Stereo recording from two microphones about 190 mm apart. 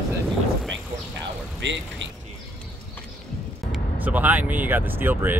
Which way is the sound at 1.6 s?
70° right (ahead or behind).